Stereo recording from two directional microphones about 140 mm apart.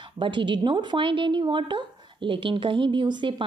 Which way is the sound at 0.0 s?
35° right (ahead or behind).